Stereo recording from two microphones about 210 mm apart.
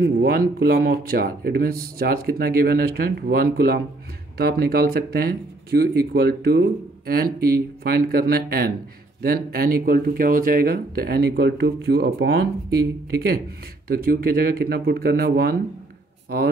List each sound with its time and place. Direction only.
0.0 s speech: 45° right (ahead or behind)